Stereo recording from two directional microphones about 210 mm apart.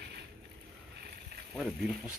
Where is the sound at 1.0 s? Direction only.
50° right (ahead or behind).